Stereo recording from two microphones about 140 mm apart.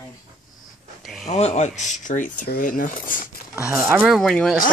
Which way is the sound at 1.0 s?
Centre (ahead or behind).